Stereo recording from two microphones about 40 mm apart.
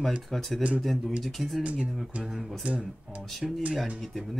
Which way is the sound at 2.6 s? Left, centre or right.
Right.